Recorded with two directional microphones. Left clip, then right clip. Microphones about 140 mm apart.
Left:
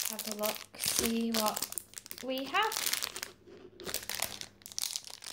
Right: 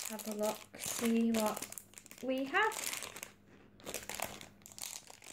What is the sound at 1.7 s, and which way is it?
Crumpling, 20° right (ahead or behind).